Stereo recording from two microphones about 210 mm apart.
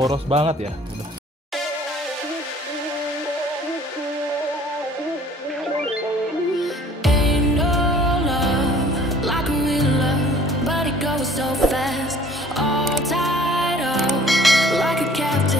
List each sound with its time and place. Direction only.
0.0 s speech: 25° right (ahead or behind)
6.6 s music: centre (ahead or behind)